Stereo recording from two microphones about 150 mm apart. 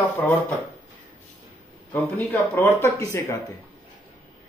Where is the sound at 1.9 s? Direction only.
10° left (ahead or behind).